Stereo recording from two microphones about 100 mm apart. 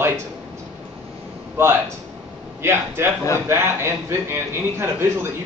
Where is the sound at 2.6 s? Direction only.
25° right (ahead or behind).